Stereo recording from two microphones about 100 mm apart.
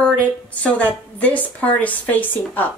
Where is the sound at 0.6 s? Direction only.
15° left (ahead or behind).